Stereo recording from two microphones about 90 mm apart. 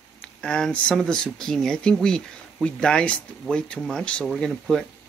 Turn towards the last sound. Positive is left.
turn(degrees=5)  # may be behind; listen again after turning